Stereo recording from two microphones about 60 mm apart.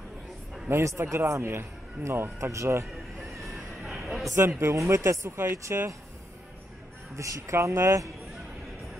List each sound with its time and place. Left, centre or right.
0.7 s speech: right
2.5 s speech: right
2.9 s vehicle: centre
3.8 s a sound: centre
4.4 s speech: right
7.2 s speech: right